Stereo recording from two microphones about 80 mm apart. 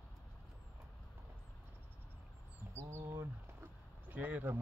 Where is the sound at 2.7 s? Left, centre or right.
Right.